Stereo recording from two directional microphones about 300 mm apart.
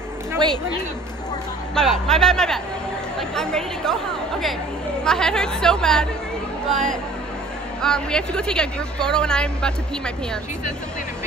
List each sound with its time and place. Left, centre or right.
1.8 s speech: centre
5.0 s speech: centre